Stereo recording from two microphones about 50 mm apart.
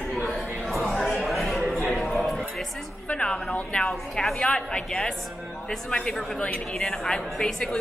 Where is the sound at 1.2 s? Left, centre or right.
Centre.